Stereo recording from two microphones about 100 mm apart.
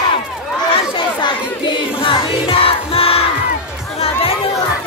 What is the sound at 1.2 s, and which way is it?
Music, 55° left (ahead or behind).